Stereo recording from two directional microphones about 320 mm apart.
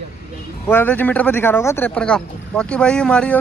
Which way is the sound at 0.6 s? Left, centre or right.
Centre.